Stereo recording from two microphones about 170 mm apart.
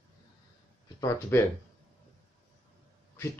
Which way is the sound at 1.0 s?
15° left (ahead or behind).